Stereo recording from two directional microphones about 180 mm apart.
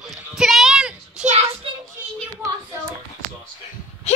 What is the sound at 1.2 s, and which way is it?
Child singing, 40° right (ahead or behind).